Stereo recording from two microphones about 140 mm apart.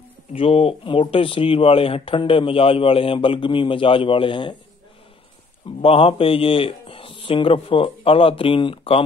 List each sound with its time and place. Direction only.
0.3 s speech: 45° left (ahead or behind)
5.8 s speech: 40° left (ahead or behind)